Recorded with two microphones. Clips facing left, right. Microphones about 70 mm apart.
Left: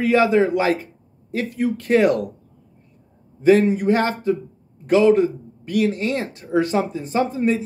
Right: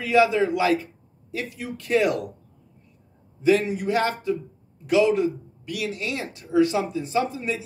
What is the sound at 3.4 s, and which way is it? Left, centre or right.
Speech, left.